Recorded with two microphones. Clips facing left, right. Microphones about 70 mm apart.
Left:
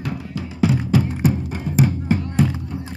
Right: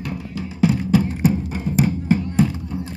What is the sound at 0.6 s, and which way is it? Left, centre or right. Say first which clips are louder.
Music: right 1 dB; left.